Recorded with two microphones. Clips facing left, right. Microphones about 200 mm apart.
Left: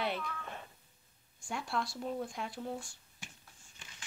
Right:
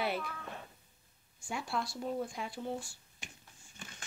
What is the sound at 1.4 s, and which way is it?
Speech, centre (ahead or behind).